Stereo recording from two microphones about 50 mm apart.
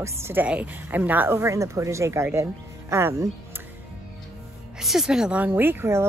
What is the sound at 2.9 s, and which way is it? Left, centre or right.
Speech, right.